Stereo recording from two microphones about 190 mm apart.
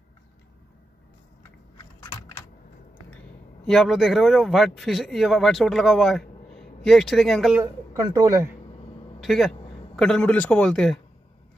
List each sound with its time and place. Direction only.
2.0 s a sound: 15° left (ahead or behind)
3.6 s speech: centre (ahead or behind)
7.9 s speech: 20° right (ahead or behind)
9.2 s a man's voice: centre (ahead or behind)